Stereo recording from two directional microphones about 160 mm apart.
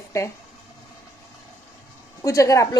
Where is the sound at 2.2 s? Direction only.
20° left (ahead or behind).